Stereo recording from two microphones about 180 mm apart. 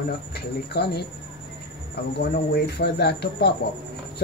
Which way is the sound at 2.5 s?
65° left (ahead or behind).